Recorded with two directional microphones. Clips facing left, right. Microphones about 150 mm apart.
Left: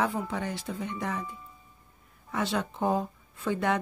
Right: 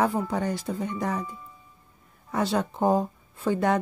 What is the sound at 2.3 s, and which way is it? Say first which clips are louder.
Speech: right 4 dB; 40° right (ahead or behind).